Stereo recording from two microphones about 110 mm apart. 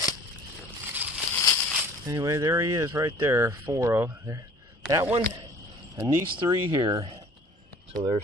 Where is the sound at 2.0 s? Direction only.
30° right (ahead or behind).